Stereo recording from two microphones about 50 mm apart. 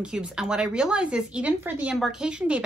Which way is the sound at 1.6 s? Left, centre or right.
Right.